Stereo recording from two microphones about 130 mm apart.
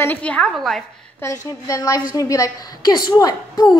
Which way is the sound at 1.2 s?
20° left (ahead or behind).